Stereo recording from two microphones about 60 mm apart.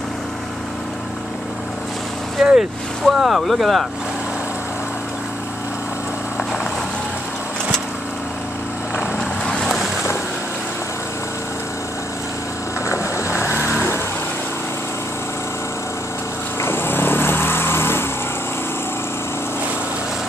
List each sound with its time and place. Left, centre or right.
2.4 s vehicle: centre
3.1 s speech: centre
9.5 s boat: centre
12.8 s vehicle: left
16.6 s vehicle: left